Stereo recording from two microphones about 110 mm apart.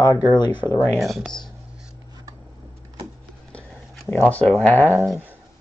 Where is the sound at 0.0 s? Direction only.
40° left (ahead or behind).